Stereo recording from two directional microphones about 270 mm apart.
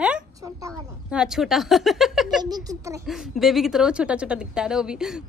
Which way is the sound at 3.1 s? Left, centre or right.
Centre.